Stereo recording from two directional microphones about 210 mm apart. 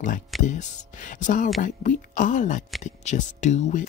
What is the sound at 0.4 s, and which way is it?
Speech, 35° left (ahead or behind).